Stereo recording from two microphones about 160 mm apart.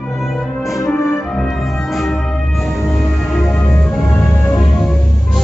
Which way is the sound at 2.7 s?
Centre (ahead or behind).